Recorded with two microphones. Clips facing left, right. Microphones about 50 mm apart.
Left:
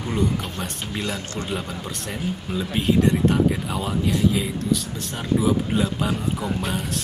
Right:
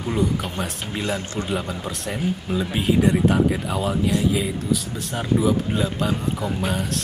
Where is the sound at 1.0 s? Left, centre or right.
Right.